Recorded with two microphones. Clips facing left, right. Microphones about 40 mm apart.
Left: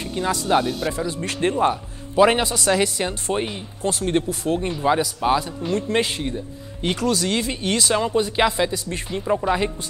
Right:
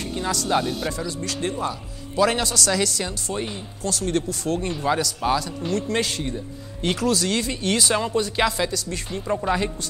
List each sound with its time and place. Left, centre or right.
0.1 s speech: left
0.6 s speech: centre
0.9 s a man's voice: left
2.2 s speech: left
5.6 s speech: centre
6.3 s speech: centre
7.7 s speech: centre
8.1 s speech: centre